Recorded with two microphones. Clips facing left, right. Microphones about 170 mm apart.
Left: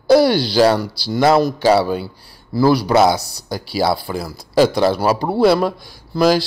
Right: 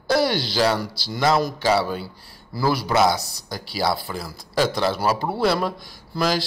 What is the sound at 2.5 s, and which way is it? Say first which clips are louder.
Speech: left 8 dB; 30° left (ahead or behind).